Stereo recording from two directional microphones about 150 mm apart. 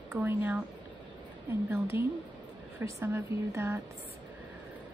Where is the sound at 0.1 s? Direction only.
15° right (ahead or behind).